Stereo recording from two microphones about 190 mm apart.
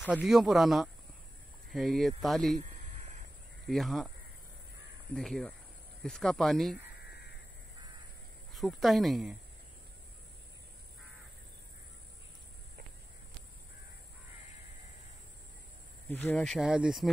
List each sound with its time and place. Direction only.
0.0 s speech: 5° right (ahead or behind)
2.6 s a sound: 40° right (ahead or behind)
3.6 s speech: centre (ahead or behind)
5.1 s speech: centre (ahead or behind)
8.5 s speech: centre (ahead or behind)
16.1 s speech: 10° left (ahead or behind)